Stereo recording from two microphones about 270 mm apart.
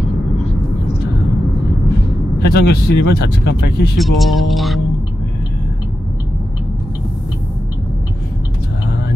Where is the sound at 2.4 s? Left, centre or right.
Left.